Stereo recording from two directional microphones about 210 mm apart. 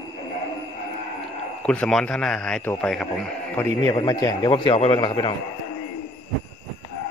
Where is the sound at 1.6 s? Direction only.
5° left (ahead or behind).